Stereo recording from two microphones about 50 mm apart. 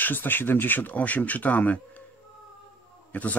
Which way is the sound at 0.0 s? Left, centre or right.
Left.